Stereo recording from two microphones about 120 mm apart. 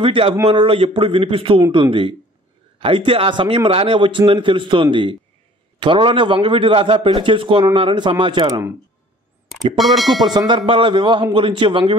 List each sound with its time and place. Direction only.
0.0 s a man's voice: 50° right (ahead or behind)
9.8 s speech: centre (ahead or behind)
10.2 s a man's voice: 40° right (ahead or behind)